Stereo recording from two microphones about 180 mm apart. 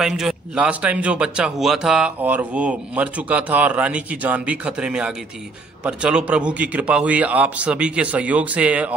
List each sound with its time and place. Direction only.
0.0 s a man's voice: 5° right (ahead or behind)